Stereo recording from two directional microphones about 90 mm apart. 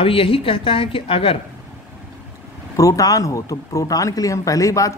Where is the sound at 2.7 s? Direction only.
40° left (ahead or behind).